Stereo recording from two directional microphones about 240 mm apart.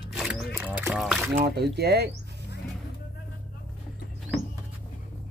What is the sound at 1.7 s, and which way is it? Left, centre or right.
Speech, right.